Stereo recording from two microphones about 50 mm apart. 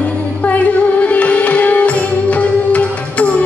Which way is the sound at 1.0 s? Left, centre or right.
Left.